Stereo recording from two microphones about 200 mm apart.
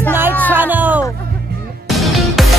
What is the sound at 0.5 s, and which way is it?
Speech, 10° right (ahead or behind).